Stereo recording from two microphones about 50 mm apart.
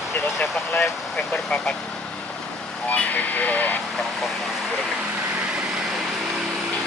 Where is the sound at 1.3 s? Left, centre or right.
Left.